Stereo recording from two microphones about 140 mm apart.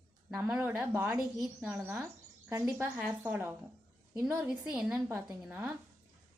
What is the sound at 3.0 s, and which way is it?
Speech, 5° right (ahead or behind).